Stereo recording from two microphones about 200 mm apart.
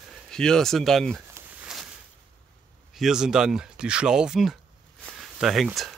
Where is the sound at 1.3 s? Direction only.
5° right (ahead or behind).